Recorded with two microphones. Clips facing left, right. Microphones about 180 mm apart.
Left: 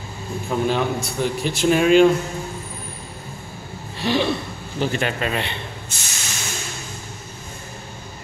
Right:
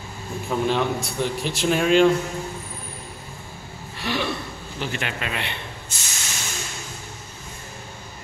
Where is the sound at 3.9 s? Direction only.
30° left (ahead or behind).